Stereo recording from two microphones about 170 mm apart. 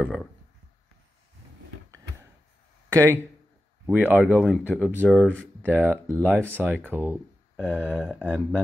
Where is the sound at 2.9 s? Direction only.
15° right (ahead or behind).